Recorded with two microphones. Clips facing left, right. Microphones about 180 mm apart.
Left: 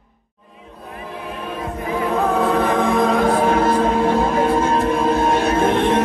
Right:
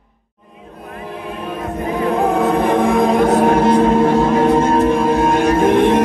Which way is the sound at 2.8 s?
Centre (ahead or behind).